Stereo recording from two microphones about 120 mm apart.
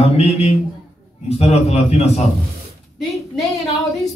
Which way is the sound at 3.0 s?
Centre (ahead or behind).